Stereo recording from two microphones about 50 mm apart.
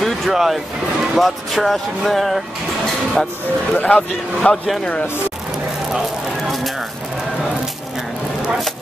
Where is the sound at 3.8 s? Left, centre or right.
Left.